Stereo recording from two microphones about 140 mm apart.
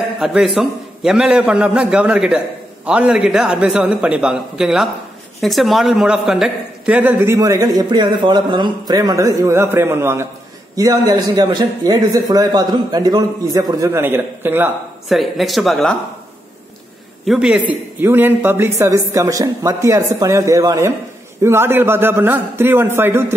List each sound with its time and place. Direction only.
0.2 s a man's voice: centre (ahead or behind)
15.0 s speech: centre (ahead or behind)
17.2 s a man's voice: 5° right (ahead or behind)